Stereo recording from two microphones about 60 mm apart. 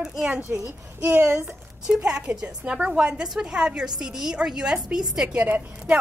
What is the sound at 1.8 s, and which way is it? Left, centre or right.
A woman's voice, centre.